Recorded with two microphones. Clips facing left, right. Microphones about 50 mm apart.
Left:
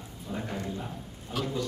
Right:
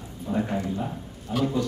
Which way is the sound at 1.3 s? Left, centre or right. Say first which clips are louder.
Right 7 dB; centre.